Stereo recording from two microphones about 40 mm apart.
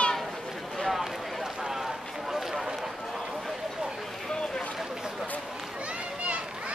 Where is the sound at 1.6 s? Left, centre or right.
Centre.